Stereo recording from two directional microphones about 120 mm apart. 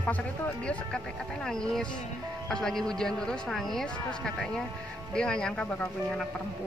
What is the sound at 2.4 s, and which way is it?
Speech, 5° left (ahead or behind).